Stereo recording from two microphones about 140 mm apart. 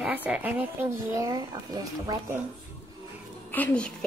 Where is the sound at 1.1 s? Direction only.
25° right (ahead or behind).